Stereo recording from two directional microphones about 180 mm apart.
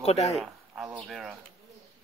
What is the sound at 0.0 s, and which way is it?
Speech, 35° left (ahead or behind).